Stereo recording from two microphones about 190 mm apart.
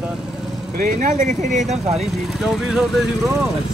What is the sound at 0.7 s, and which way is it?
Speech, 50° right (ahead or behind).